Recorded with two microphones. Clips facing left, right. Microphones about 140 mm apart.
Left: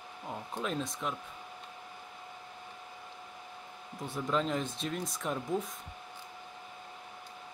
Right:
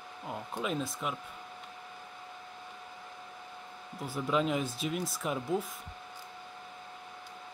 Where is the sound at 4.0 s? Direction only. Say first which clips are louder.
Right 2 dB; 5° right (ahead or behind).